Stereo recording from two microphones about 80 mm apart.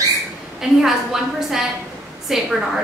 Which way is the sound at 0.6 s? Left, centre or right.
Centre.